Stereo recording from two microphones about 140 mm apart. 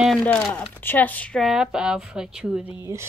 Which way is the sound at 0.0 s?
5° left (ahead or behind).